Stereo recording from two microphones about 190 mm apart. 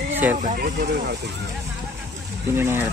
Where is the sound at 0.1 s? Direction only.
10° right (ahead or behind).